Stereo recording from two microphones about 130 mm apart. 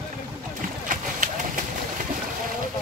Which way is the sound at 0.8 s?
80° right.